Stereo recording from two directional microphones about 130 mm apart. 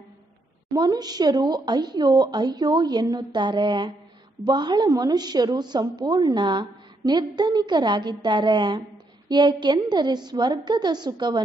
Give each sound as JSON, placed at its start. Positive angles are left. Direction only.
{"t": 0.7, "sound": "a woman's voice", "side_deg": -30}